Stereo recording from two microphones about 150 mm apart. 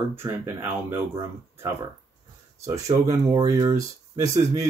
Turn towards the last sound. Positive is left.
turn(degrees=-25)  # may be behind; listen again after turning